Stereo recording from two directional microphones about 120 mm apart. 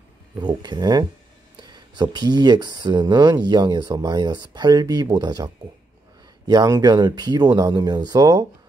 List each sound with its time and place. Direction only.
0.4 s speech: 35° right (ahead or behind)